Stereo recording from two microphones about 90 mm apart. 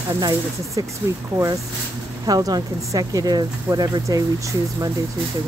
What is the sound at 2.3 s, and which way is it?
Speech, 45° right (ahead or behind).